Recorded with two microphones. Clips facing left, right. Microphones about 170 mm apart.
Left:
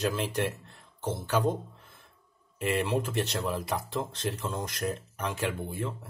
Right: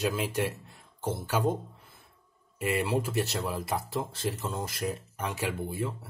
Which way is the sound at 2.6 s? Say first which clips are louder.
Even; 5° right (ahead or behind).